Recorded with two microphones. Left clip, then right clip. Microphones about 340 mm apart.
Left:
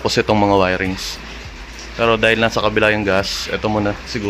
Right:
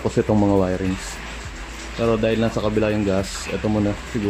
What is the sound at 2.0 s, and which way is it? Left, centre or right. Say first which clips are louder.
Speech: left 6 dB; left.